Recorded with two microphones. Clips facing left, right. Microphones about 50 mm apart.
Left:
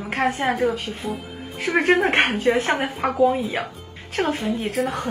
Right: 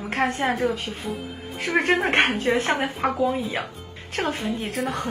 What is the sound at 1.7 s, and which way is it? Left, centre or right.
Speech, left.